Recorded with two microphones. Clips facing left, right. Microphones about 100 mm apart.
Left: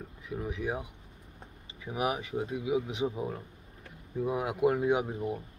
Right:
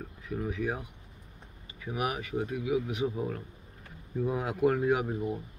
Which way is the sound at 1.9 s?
20° left (ahead or behind).